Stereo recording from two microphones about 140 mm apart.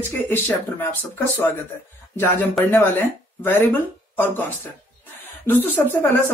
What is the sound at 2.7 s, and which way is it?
Speech, 15° left (ahead or behind).